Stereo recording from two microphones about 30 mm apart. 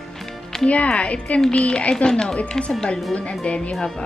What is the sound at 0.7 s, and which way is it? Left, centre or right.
Speech, left.